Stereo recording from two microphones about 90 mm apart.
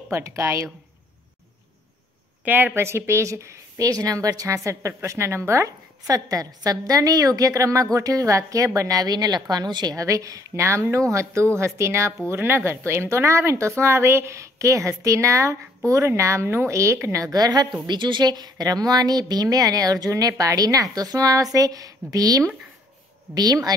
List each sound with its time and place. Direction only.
0.1 s speech: 30° right (ahead or behind)
2.4 s speech: 20° right (ahead or behind); by 17.7 s 50° right (ahead or behind)
17.8 s a woman's voice: 60° right (ahead or behind)